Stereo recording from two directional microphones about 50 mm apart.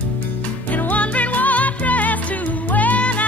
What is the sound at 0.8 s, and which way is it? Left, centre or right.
Music, left.